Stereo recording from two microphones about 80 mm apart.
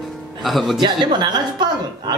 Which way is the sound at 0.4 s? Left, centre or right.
Centre.